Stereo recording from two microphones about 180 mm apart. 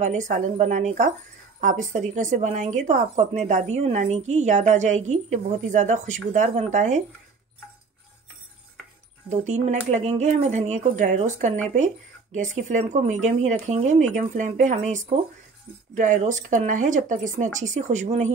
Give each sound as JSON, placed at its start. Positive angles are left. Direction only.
{"t": 0.0, "sound": "a woman's voice", "side_deg": -45}
{"t": 9.3, "sound": "a woman's voice", "side_deg": -40}